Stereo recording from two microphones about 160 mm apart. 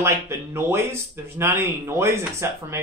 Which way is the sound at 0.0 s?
15° right (ahead or behind).